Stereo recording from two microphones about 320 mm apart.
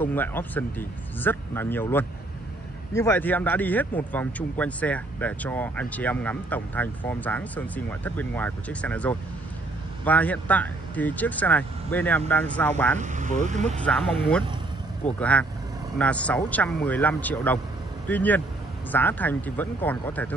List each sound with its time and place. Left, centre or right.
0.0 s a man's voice: centre
13.0 s speech: right
13.8 s a man's voice: centre
15.1 s a man's voice: centre